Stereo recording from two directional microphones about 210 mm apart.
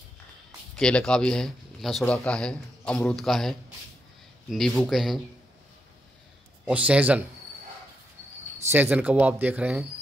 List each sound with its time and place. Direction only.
0.7 s speech: 5° left (ahead or behind)
6.6 s speech: 5° right (ahead or behind)
8.6 s speech: 10° right (ahead or behind)